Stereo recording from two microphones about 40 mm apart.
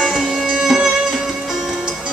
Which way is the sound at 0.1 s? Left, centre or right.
Centre.